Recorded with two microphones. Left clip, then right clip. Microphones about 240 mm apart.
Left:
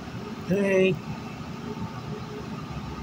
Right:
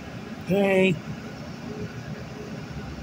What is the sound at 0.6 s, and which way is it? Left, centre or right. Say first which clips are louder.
Speech: right 1 dB; centre.